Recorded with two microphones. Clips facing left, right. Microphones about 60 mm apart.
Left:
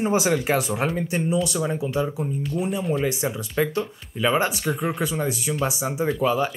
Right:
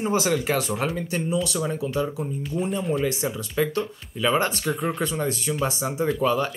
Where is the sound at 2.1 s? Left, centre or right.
Centre.